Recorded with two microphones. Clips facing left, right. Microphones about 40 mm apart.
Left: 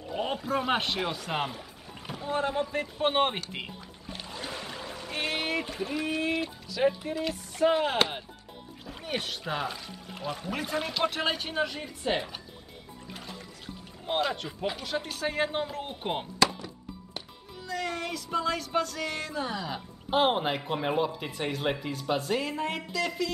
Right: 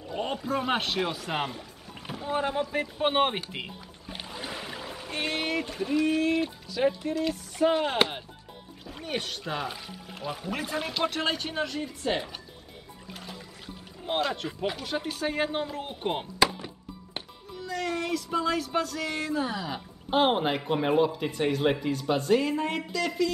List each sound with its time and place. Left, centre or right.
0.1 s speech: centre
4.1 s a sound: centre
6.9 s speech: centre
13.1 s music: centre
14.0 s speech: centre
16.5 s music: right
17.6 s speech: centre